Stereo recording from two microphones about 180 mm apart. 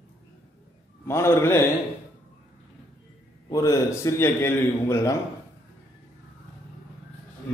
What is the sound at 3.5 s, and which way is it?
A man's voice, 15° left (ahead or behind).